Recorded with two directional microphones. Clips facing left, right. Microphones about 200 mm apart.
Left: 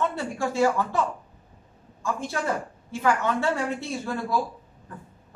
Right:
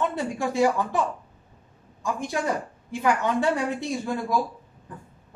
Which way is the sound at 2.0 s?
15° right (ahead or behind).